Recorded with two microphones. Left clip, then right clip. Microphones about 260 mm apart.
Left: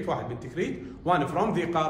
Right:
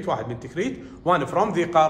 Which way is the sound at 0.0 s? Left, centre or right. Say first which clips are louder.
Right 4 dB; right.